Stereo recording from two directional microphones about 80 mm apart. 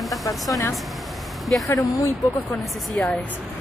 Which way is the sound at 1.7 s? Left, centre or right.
Left.